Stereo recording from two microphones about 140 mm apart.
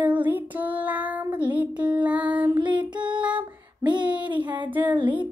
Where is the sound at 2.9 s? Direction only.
35° right (ahead or behind).